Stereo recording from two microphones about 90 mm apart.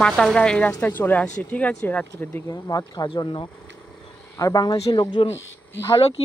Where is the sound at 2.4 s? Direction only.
40° left (ahead or behind).